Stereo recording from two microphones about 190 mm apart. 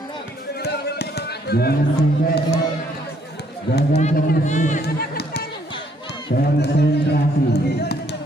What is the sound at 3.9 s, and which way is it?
Speech, 35° left (ahead or behind).